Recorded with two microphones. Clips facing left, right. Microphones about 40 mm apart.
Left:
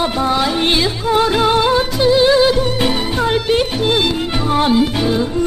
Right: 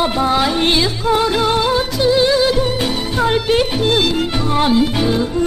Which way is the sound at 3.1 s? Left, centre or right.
Centre.